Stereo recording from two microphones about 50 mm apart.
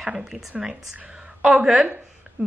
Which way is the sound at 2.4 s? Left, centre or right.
Right.